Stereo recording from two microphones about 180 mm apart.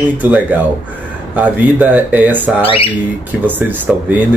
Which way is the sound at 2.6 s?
30° left (ahead or behind).